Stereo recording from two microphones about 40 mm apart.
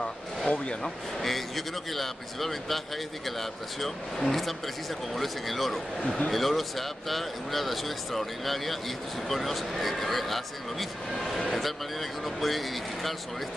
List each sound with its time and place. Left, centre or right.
0.5 s speech: left
0.8 s speech: centre
5.9 s speech: left
6.3 s speech: centre